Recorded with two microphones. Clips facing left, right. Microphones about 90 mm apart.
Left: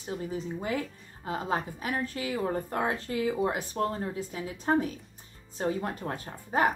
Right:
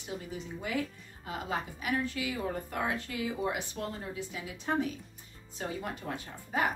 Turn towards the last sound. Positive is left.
turn(degrees=40)  # may be behind; listen again after turning